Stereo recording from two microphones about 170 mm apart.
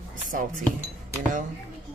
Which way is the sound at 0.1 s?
55° right (ahead or behind).